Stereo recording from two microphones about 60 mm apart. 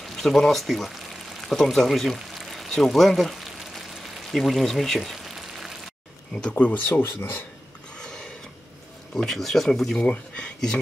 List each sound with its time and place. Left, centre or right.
0.1 s speech: centre
2.1 s a sound: centre
6.5 s speech: left
8.0 s a sound: centre
9.1 s speech: centre
9.9 s speech: centre